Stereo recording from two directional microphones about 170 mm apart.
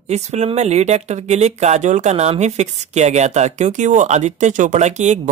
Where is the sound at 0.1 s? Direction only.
40° right (ahead or behind).